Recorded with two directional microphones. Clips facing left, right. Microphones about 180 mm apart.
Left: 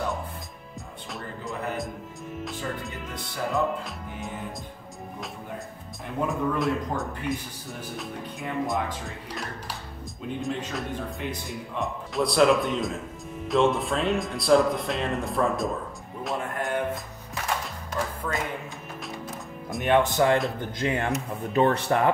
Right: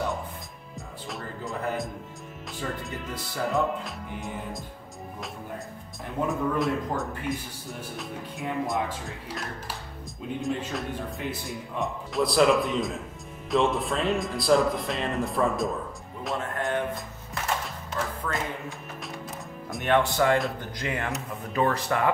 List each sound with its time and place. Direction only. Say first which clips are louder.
1.1 s music: even; centre (ahead or behind)
2.4 s speech: even; centre (ahead or behind)
6.2 s speech: even; centre (ahead or behind)
16.3 s music: even; centre (ahead or behind)
19.8 s speech: left 2 dB; 20° left (ahead or behind)